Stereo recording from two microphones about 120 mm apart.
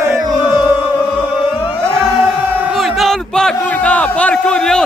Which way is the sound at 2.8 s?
Centre (ahead or behind).